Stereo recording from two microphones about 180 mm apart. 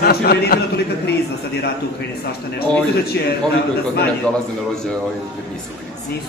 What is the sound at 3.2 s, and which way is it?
Speech, 70° left (ahead or behind).